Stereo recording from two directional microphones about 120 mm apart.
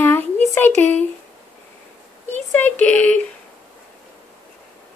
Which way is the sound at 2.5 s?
15° left (ahead or behind).